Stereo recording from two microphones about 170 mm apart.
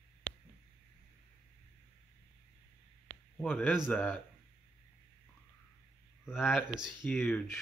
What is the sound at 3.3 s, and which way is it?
Speech, 5° left (ahead or behind).